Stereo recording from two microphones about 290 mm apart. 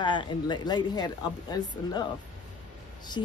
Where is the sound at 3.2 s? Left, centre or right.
Centre.